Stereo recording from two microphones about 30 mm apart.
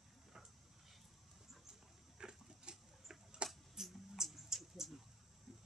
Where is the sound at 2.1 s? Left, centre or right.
Right.